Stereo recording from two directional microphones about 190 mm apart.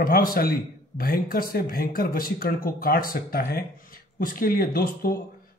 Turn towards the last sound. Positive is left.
turn(degrees=50)  # may be behind; listen again after turning